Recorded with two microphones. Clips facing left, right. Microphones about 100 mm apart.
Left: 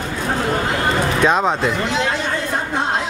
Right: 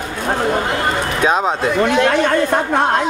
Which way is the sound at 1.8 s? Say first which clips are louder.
Right 6 dB; 55° right (ahead or behind).